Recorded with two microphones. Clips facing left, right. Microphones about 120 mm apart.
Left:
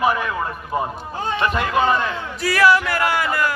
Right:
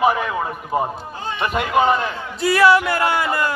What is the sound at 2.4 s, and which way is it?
A man's voice, 25° right (ahead or behind).